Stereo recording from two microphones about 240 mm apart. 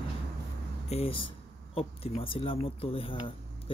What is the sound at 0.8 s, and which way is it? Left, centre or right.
Speech, left.